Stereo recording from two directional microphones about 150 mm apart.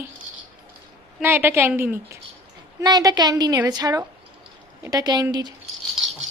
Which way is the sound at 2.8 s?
25° right (ahead or behind).